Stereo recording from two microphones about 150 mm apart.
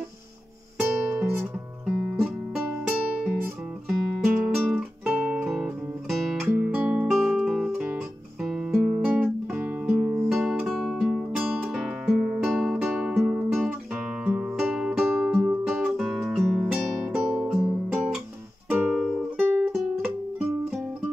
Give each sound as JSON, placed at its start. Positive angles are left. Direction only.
{"t": 0.7, "sound": "music", "side_deg": -10}
{"t": 4.2, "sound": "music", "side_deg": 0}
{"t": 6.5, "sound": "music", "side_deg": -10}
{"t": 7.1, "sound": "music", "side_deg": 0}
{"t": 9.0, "sound": "guitar", "side_deg": -10}
{"t": 10.2, "sound": "music", "side_deg": -5}
{"t": 17.2, "sound": "music", "side_deg": -5}